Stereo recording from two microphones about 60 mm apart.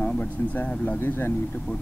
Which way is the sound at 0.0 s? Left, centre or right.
Left.